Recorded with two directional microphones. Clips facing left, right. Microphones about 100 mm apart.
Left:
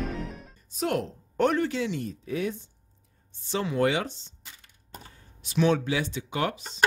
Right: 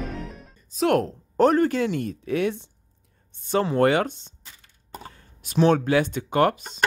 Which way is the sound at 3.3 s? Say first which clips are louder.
Right 6 dB; 50° right (ahead or behind).